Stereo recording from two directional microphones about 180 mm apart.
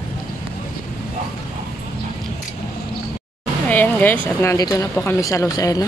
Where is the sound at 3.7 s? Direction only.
10° left (ahead or behind).